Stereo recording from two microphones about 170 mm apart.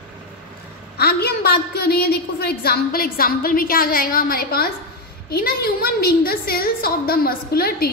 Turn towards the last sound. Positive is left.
turn(degrees=65)  # may be behind; listen again after turning